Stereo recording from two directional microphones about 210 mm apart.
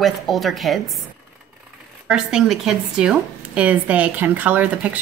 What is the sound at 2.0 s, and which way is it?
Speech, 5° right (ahead or behind).